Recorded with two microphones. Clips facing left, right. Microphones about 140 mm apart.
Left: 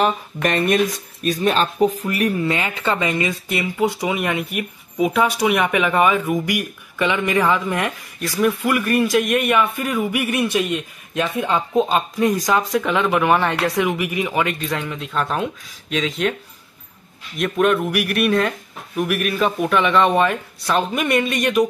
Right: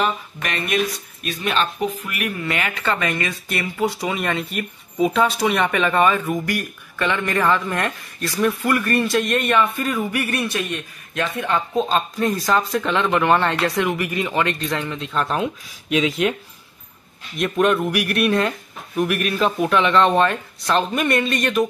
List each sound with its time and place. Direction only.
0.0 s speech: 45° left (ahead or behind)
2.3 s speech: 25° left (ahead or behind); by 16.3 s 5° right (ahead or behind)
17.4 s speech: centre (ahead or behind)